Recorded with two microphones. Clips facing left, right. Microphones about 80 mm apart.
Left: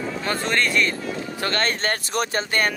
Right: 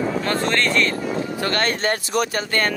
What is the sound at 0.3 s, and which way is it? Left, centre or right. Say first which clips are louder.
Speech: even; centre.